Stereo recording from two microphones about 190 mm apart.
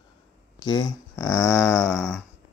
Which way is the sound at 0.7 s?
20° left (ahead or behind).